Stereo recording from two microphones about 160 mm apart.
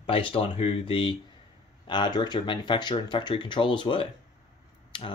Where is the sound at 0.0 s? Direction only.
35° left (ahead or behind).